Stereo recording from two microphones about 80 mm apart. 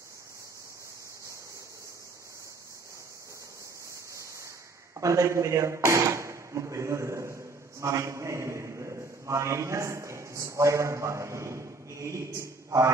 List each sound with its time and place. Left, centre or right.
4.9 s speech: right